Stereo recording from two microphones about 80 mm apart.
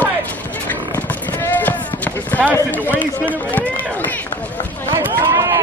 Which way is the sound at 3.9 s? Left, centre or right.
Left.